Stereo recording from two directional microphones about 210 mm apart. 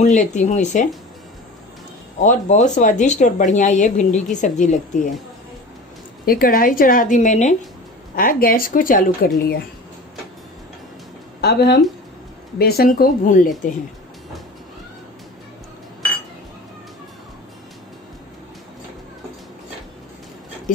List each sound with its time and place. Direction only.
0.0 s speech: 35° left (ahead or behind)
2.1 s speech: 35° left (ahead or behind)
6.2 s speech: 45° left (ahead or behind)
11.4 s speech: 50° left (ahead or behind)